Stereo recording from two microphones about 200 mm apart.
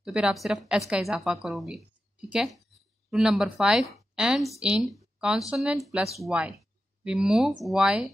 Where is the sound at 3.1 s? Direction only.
Centre (ahead or behind).